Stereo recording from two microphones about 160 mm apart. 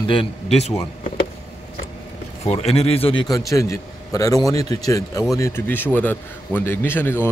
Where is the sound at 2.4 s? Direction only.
40° left (ahead or behind).